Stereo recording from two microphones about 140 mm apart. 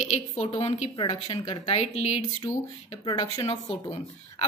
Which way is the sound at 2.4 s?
20° left (ahead or behind).